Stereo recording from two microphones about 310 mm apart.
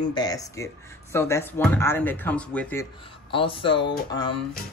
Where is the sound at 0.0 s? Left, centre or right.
Centre.